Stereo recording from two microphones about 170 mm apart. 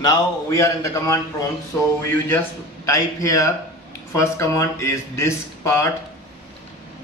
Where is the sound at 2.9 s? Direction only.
20° left (ahead or behind).